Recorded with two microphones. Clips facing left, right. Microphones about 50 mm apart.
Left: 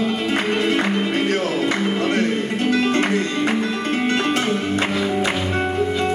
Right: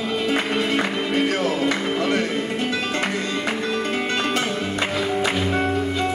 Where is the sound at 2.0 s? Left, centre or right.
Left.